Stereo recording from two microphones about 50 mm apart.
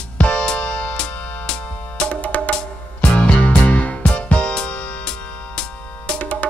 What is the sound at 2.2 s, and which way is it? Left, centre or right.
Music, left.